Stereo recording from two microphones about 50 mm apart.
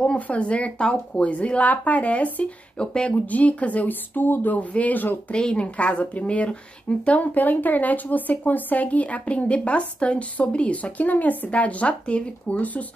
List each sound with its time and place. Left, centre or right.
0.0 s speech: left
2.8 s speech: centre
3.3 s speech: left
5.3 s speech: centre